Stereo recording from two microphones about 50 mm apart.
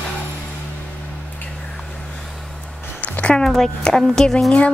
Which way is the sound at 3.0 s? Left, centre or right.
Left.